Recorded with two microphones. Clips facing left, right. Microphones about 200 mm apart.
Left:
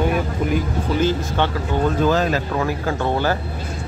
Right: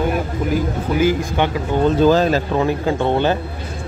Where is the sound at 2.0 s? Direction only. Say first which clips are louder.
Right 6 dB; 30° right (ahead or behind).